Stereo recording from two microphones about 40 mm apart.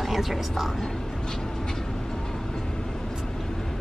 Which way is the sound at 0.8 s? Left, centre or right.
Centre.